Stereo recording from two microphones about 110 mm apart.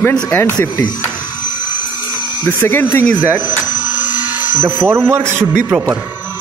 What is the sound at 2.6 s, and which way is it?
Speech, 20° left (ahead or behind).